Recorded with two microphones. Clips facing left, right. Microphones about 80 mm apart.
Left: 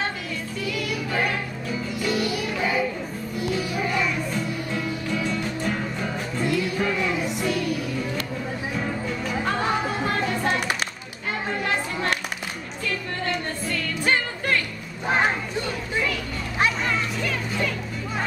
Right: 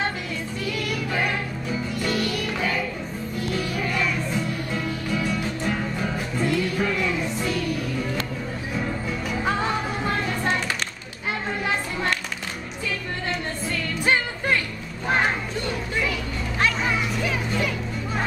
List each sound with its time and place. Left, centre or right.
2.0 s music: centre
5.2 s music: centre
9.4 s music: centre
13.3 s music: centre
15.0 s a sound: centre
16.8 s music: centre